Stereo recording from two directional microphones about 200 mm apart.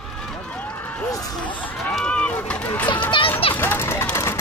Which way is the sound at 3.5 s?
10° left (ahead or behind).